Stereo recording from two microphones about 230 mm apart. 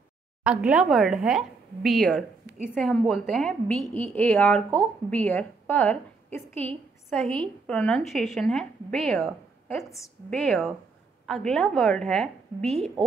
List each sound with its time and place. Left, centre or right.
0.4 s a woman's voice: centre